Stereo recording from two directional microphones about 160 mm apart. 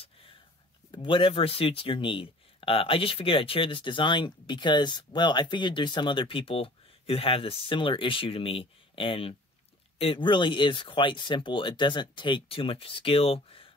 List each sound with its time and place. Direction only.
0.9 s speech: 30° left (ahead or behind)